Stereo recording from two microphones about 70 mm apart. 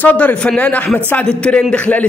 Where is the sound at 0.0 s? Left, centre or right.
Left.